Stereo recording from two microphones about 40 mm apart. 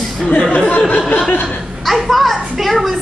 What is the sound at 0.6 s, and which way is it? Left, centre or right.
Speech, left.